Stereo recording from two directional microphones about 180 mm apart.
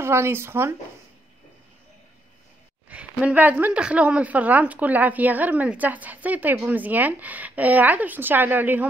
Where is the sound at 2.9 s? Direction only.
5° right (ahead or behind).